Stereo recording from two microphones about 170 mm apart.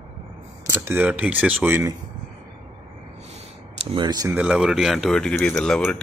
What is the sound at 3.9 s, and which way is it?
Speech, 30° right (ahead or behind).